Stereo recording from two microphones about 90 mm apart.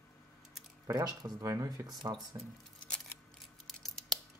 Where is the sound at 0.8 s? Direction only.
45° right (ahead or behind).